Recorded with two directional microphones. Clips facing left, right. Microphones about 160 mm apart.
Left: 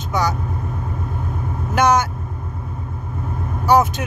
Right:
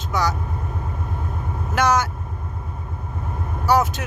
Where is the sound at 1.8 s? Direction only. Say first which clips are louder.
Left 3 dB; 20° left (ahead or behind).